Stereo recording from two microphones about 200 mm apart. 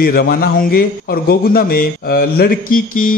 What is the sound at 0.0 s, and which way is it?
A man's voice, 50° left (ahead or behind).